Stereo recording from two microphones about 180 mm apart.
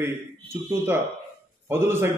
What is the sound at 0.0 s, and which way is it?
A man's voice, 15° right (ahead or behind).